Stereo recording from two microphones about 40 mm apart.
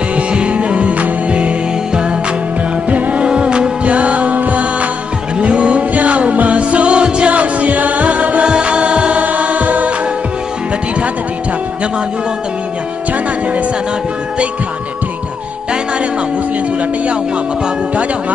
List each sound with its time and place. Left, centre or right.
0.1 s music: right
8.5 s music: right